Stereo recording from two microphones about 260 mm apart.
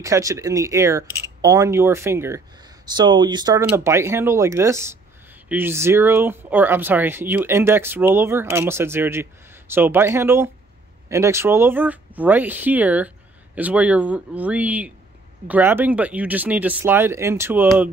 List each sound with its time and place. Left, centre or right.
0.0 s speech: centre